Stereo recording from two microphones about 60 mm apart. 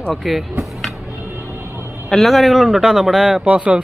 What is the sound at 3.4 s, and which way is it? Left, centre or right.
Speech, right.